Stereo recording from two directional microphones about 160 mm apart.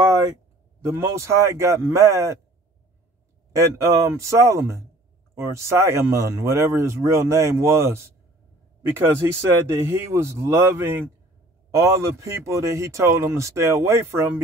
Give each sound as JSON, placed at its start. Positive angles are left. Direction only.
{"t": 0.8, "sound": "speech", "side_deg": -20}
{"t": 3.5, "sound": "speech", "side_deg": -20}